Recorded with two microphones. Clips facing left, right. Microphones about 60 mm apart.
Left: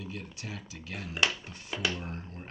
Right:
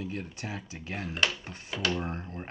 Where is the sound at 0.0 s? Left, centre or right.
Right.